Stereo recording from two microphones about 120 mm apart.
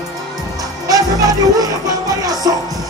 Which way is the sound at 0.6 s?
30° right (ahead or behind).